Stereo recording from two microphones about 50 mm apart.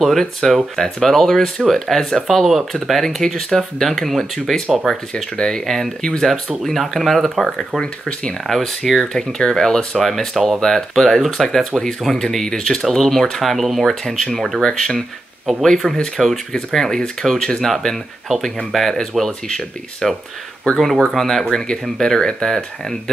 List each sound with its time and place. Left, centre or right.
0.2 s speech: centre
4.6 s speech: centre
5.1 s speech: centre
8.1 s speech: left
8.5 s speech: centre
17.6 s speech: centre
21.5 s speech: centre